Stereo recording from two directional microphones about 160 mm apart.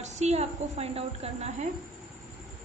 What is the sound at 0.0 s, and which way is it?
A woman's voice, 45° right (ahead or behind).